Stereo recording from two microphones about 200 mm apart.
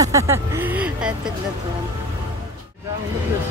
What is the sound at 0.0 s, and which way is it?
Speech, 15° right (ahead or behind).